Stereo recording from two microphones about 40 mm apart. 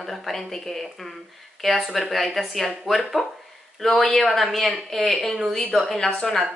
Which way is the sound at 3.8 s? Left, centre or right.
Centre.